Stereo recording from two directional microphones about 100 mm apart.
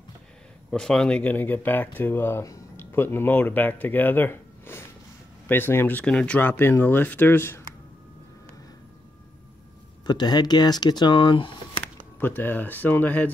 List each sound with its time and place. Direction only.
0.7 s speech: 5° left (ahead or behind); by 6.0 s 20° left (ahead or behind)
6.0 s speech: 10° left (ahead or behind)
10.0 s speech: 45° left (ahead or behind)
12.2 s speech: 20° left (ahead or behind)